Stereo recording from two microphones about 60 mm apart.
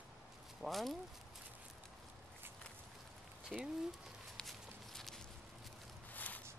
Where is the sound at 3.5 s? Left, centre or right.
Centre.